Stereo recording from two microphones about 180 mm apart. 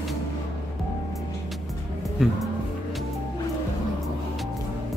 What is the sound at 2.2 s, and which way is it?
Music, 5° right (ahead or behind).